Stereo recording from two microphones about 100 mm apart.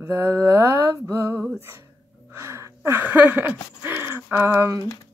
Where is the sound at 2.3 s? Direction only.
30° right (ahead or behind).